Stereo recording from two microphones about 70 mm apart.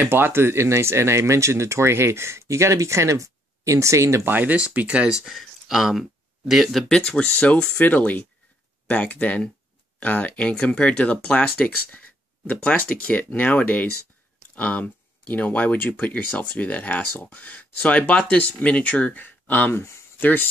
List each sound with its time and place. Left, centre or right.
0.0 s speech: right
4.3 s speech: right
4.6 s speech: centre
5.2 s speech: centre; by 20.4 s left